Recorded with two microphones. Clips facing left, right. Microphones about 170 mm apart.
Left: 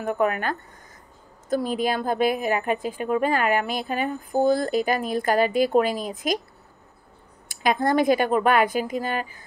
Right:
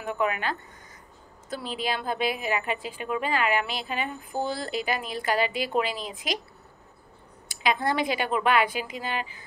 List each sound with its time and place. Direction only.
0.0 s a woman's voice: 45° left (ahead or behind)
7.4 s a woman's voice: 45° left (ahead or behind)